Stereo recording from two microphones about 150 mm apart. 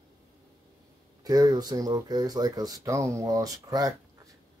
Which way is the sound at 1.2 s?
25° right (ahead or behind).